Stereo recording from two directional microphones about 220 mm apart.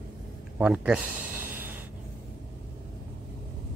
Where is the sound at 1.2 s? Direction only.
40° right (ahead or behind).